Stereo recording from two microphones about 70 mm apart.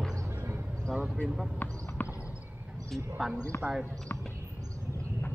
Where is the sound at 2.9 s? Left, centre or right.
Centre.